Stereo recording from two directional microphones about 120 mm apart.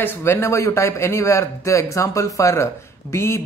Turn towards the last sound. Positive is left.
turn(degrees=25)  # may be behind; listen again after turning